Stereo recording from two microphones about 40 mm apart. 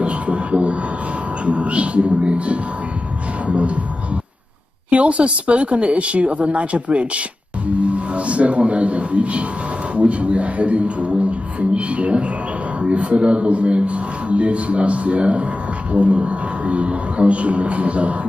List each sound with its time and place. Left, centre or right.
0.0 s a man's voice: right